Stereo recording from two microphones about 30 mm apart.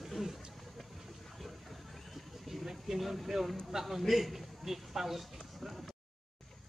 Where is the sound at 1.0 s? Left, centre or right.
Centre.